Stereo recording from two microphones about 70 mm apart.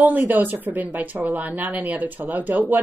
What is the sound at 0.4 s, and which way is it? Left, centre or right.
Speech, right.